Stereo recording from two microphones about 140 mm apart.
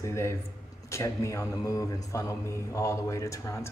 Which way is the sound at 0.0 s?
20° left (ahead or behind).